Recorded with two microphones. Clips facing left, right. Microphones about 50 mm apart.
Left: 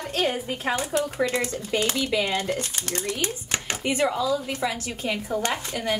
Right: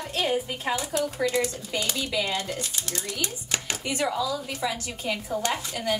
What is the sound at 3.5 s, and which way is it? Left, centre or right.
Speech, left.